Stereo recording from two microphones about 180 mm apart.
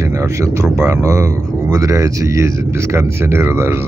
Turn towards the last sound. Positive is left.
turn(degrees=-15)  # may be behind; listen again after turning